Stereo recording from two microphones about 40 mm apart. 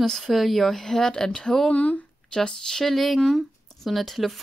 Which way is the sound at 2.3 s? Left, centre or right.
Centre.